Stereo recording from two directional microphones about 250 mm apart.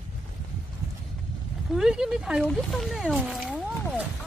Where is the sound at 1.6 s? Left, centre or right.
Centre.